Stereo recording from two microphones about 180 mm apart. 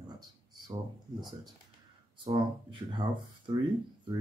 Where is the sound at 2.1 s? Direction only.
25° right (ahead or behind).